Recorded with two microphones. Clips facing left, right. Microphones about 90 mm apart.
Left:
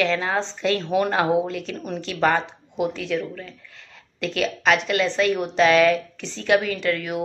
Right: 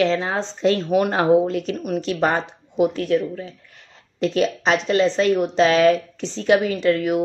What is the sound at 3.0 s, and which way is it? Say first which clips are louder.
Speech: right 6 dB; 85° left.